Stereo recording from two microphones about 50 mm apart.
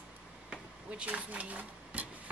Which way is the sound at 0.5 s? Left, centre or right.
Right.